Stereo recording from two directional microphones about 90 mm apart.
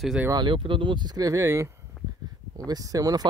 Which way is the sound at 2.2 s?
45° right (ahead or behind).